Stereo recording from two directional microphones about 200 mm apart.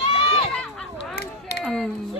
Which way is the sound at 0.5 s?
5° left (ahead or behind).